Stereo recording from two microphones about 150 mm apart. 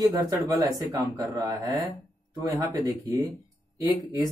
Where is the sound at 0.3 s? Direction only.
20° right (ahead or behind).